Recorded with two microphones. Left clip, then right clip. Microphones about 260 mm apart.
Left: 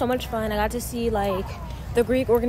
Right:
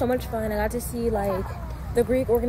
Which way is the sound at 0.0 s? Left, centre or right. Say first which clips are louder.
Left 1 dB; centre.